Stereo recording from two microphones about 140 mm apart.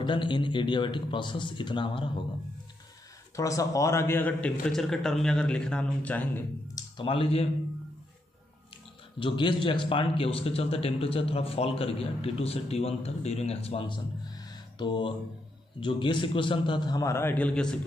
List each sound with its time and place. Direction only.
0.0 s a man's voice: 35° left (ahead or behind)
3.3 s a man's voice: 25° left (ahead or behind)
6.7 s a sound: 35° left (ahead or behind)
9.2 s a man's voice: 35° left (ahead or behind); by 17.7 s 5° left (ahead or behind)